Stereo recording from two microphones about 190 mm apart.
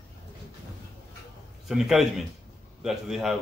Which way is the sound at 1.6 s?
Centre (ahead or behind).